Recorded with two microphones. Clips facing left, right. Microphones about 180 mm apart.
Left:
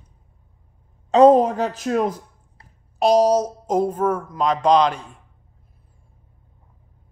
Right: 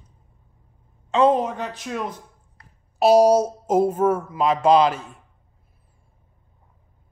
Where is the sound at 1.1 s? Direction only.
40° left (ahead or behind).